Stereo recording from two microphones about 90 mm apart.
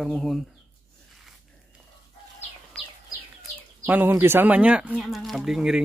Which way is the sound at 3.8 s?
20° right (ahead or behind).